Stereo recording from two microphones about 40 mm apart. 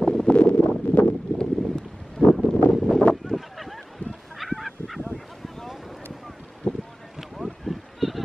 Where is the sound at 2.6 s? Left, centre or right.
Left.